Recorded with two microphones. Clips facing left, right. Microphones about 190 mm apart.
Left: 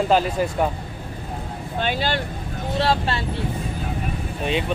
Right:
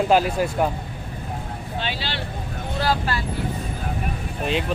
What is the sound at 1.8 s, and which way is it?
Speech, 50° left (ahead or behind).